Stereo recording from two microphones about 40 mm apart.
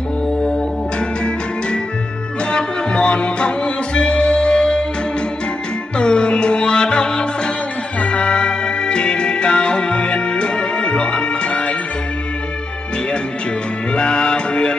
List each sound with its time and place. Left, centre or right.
0.4 s music: left
5.9 s music: left
13.9 s music: left